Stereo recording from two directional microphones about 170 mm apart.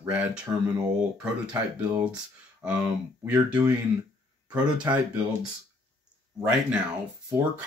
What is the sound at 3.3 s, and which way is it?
Speech, 10° right (ahead or behind).